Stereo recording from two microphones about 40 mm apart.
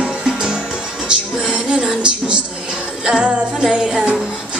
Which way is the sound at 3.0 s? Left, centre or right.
Right.